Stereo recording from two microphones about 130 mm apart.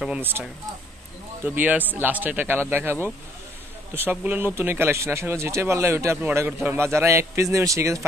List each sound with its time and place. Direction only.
0.0 s speech: 10° right (ahead or behind)